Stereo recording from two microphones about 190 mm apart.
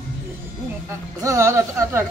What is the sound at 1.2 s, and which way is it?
Speech, 15° right (ahead or behind).